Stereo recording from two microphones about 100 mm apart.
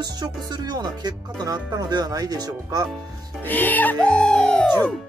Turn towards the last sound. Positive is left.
turn(degrees=10)  # may be behind; listen again after turning